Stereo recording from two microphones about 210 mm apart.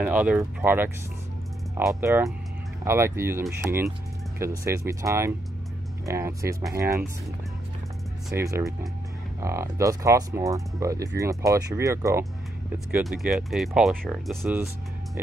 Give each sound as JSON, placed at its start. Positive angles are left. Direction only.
{"t": 0.0, "sound": "speech", "side_deg": -5}
{"t": 8.3, "sound": "speech", "side_deg": -15}
{"t": 13.0, "sound": "speech", "side_deg": 0}
{"t": 14.4, "sound": "speech", "side_deg": -10}